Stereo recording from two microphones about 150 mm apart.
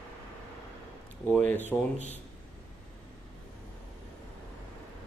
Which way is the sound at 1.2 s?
10° left (ahead or behind).